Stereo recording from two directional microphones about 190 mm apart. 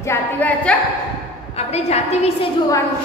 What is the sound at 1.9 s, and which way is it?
Speech, 35° left (ahead or behind).